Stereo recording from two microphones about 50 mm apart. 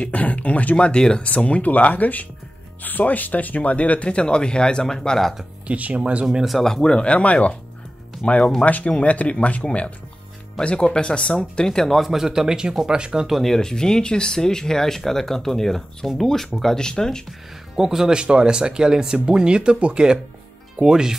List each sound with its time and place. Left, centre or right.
0.0 s speech: left; by 5.3 s centre
5.7 s speech: right
6.6 s speech: centre
8.4 s speech: centre
8.6 s speech: left; by 12.0 s centre
12.0 s speech: centre
13.3 s speech: centre
17.7 s speech: centre